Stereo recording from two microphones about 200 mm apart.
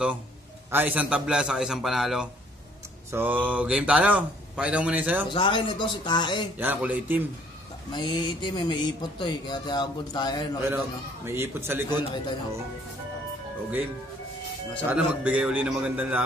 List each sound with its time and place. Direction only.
0.7 s a man's voice: 10° right (ahead or behind)
5.3 s speech: 25° left (ahead or behind)
6.6 s speech: 10° right (ahead or behind)
7.9 s speech: 20° left (ahead or behind)
11.2 s speech: 10° right (ahead or behind)
11.9 s speech: 25° left (ahead or behind)
14.9 s speech: 5° right (ahead or behind)